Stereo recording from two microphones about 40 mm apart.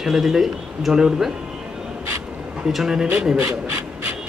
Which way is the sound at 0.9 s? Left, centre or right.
Centre.